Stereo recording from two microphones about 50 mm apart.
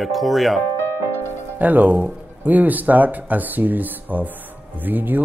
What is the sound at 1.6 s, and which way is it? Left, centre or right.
Speech, right.